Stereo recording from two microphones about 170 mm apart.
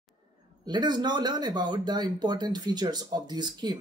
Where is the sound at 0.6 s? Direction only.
25° right (ahead or behind).